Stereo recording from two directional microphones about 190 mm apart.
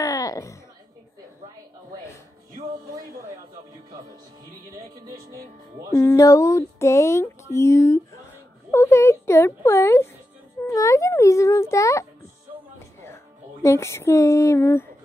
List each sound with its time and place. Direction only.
0.0 s a sound: 15° left (ahead or behind)
5.0 s speech: 15° right (ahead or behind)
5.9 s a child's voice: 15° left (ahead or behind)
12.7 s music: 15° left (ahead or behind)